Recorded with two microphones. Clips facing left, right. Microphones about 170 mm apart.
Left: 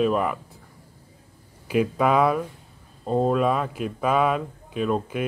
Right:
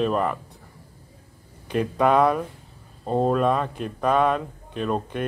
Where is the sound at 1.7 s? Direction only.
5° left (ahead or behind).